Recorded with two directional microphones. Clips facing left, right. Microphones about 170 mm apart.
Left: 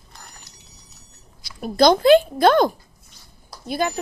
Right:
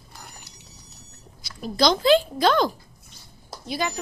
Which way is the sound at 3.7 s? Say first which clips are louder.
Left 4 dB; 50° left (ahead or behind).